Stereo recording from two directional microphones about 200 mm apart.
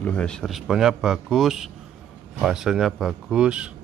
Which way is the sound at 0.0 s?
5° left (ahead or behind).